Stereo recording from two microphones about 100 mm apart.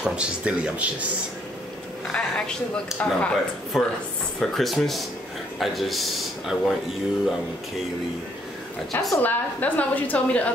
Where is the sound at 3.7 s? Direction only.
5° right (ahead or behind).